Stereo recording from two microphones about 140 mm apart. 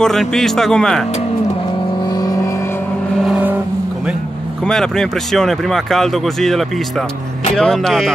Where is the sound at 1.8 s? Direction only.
35° left (ahead or behind).